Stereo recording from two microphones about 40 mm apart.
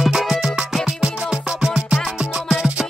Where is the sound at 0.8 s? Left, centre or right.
Right.